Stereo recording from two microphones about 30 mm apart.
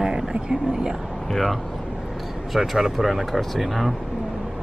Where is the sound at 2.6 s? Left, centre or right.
Centre.